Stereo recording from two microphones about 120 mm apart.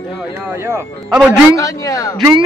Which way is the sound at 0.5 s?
20° right (ahead or behind).